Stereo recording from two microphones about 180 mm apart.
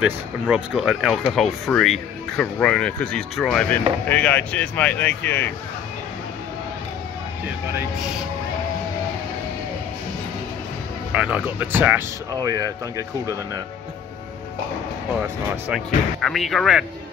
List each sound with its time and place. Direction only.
0.0 s speech: 5° right (ahead or behind)
11.1 s speech: 5° right (ahead or behind)
12.4 s speech: 20° right (ahead or behind)
15.7 s speech: centre (ahead or behind)